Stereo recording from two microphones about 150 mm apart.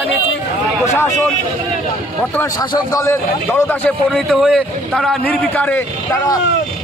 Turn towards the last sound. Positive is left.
turn(degrees=10)  # may be behind; listen again after turning